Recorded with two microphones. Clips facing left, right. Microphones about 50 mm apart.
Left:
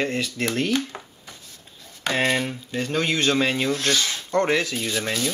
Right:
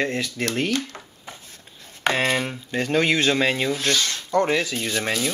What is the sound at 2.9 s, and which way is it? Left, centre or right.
Speech, right.